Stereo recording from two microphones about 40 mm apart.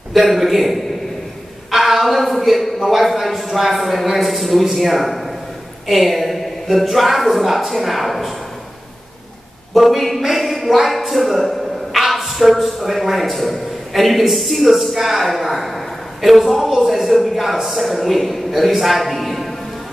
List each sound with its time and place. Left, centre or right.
0.1 s a man's voice: centre
1.7 s a sound: centre
5.9 s speech: centre
9.8 s a man's voice: centre